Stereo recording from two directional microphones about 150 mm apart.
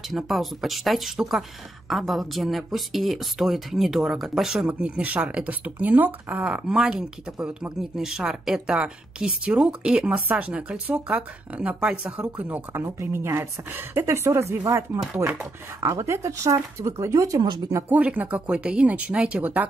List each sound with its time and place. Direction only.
0.1 s speech: centre (ahead or behind); by 17.8 s 25° right (ahead or behind)
17.8 s speech: 10° right (ahead or behind)